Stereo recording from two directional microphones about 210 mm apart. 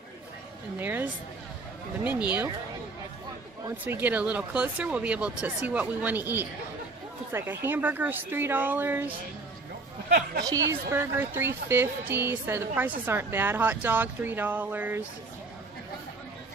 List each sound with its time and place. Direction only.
0.7 s a woman's voice: 10° right (ahead or behind)
3.6 s a woman's voice: 10° right (ahead or behind)
10.0 s speech: 45° right (ahead or behind)
10.4 s a woman's voice: 15° right (ahead or behind)